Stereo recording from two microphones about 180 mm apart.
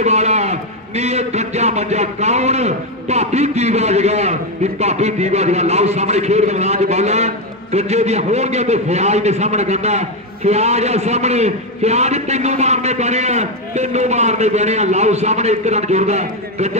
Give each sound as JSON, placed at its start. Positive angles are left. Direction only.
{"t": 0.0, "sound": "a man's voice", "side_deg": -40}